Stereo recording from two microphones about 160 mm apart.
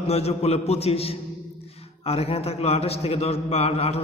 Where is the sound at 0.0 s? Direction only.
40° left (ahead or behind).